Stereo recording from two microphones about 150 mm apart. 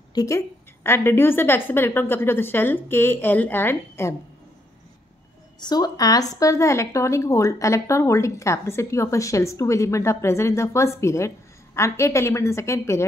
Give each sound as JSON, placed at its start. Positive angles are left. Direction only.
{"t": 0.1, "sound": "a woman's voice", "side_deg": 20}
{"t": 5.6, "sound": "a woman's voice", "side_deg": 25}